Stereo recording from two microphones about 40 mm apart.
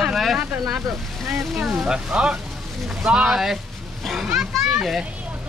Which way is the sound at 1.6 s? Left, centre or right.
Right.